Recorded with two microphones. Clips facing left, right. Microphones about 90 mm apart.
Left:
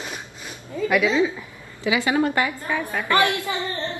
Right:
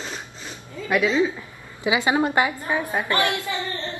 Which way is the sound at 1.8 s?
20° right (ahead or behind).